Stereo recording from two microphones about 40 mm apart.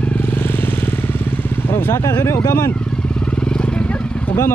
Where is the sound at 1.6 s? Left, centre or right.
Left.